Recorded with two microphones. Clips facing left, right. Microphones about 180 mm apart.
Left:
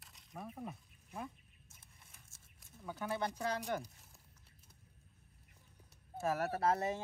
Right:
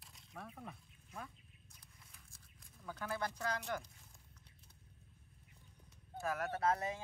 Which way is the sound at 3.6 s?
35° left (ahead or behind).